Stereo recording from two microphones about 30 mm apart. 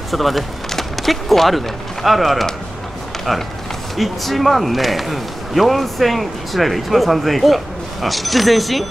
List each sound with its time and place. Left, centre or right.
0.1 s speech: centre
0.7 s a sound: centre
2.0 s speech: centre